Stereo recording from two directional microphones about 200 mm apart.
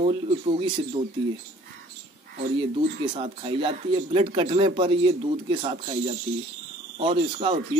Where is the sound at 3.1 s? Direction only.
25° right (ahead or behind).